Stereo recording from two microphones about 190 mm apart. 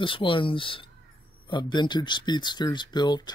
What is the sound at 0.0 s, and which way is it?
Speech, 25° left (ahead or behind).